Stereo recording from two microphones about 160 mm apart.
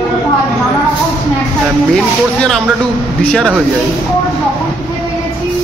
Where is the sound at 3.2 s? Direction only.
5° left (ahead or behind).